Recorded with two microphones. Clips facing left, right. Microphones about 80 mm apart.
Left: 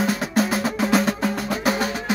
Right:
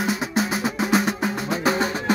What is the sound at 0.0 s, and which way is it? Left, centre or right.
Music, centre.